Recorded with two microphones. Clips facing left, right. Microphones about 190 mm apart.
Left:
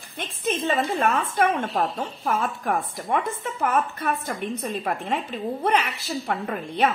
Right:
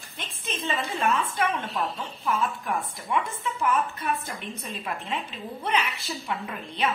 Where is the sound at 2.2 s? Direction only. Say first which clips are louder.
Left 2 dB; 55° left (ahead or behind).